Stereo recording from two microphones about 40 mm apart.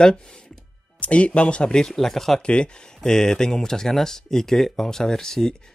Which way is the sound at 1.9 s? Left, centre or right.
Centre.